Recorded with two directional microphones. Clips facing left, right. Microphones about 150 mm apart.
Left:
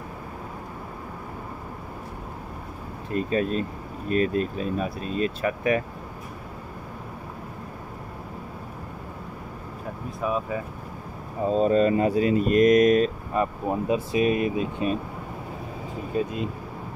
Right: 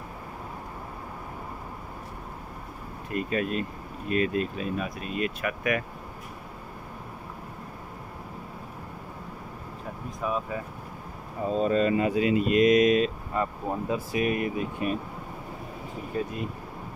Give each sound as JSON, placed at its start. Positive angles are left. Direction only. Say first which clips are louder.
{"t": 3.1, "sound": "speech", "louder": "left 4 dB", "side_deg": 30}
{"t": 10.2, "sound": "speech", "louder": "left 3 dB", "side_deg": 5}
{"t": 11.4, "sound": "speech", "louder": "left 4 dB", "side_deg": 35}
{"t": 13.3, "sound": "speech", "louder": "left 4 dB", "side_deg": 20}
{"t": 16.2, "sound": "speech", "louder": "left 4 dB", "side_deg": 20}